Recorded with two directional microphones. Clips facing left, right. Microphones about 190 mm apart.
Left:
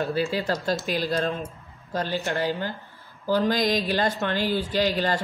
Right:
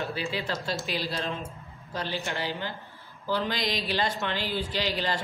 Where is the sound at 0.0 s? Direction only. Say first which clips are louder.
Left 6 dB; 40° left (ahead or behind).